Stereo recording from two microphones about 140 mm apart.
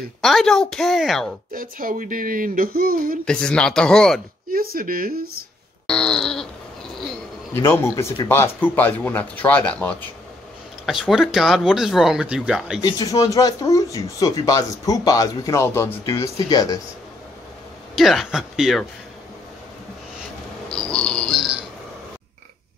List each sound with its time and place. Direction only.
0.2 s speech: centre (ahead or behind)
1.5 s a sound: 90° right
3.3 s speech: 5° left (ahead or behind)
4.5 s speech: 90° right
5.9 s speech: 5° left (ahead or behind)
7.5 s speech: 20° left (ahead or behind)
10.9 s speech: centre (ahead or behind)
12.8 s speech: 25° left (ahead or behind)
17.9 s speech: centre (ahead or behind)
20.7 s a sound: 5° left (ahead or behind)